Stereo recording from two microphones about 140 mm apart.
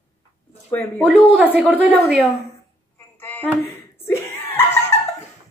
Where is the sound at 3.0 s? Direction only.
15° left (ahead or behind).